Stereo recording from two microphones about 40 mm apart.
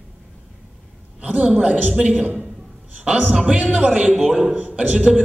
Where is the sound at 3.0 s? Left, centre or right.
Right.